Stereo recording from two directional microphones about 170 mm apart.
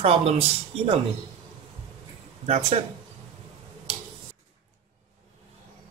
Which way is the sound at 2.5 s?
40° right (ahead or behind).